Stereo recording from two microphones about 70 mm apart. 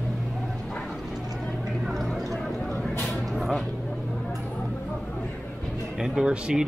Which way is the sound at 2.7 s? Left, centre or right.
Left.